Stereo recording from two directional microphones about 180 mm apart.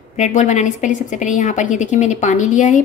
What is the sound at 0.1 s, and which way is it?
A woman's voice, 40° left (ahead or behind).